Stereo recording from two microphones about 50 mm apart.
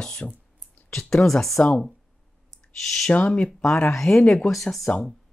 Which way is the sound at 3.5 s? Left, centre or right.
Centre.